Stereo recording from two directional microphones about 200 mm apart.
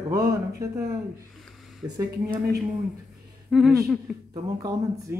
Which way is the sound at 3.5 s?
Centre (ahead or behind).